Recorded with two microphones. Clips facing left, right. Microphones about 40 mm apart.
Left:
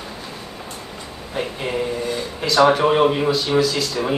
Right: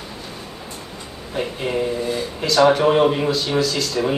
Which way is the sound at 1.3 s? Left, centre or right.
Centre.